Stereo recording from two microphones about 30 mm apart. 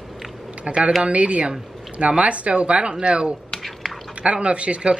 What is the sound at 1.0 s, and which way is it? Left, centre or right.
Speech, right.